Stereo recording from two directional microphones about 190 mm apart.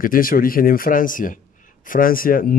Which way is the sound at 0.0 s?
45° left (ahead or behind).